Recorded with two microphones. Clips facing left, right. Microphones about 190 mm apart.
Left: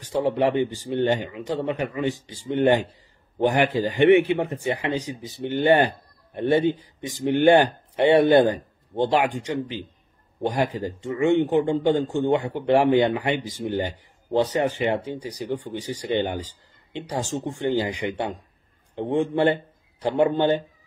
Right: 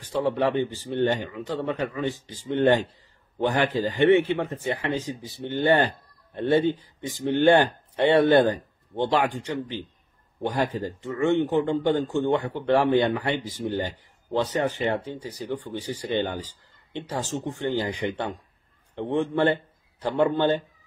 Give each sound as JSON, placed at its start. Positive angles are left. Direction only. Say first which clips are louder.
{"t": 0.0, "sound": "a man's voice", "louder": "left 2 dB", "side_deg": 15}